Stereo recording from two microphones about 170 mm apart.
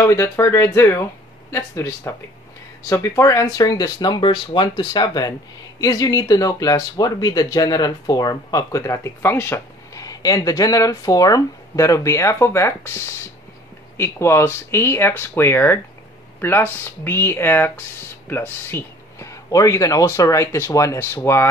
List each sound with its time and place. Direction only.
0.0 s speech: 15° left (ahead or behind)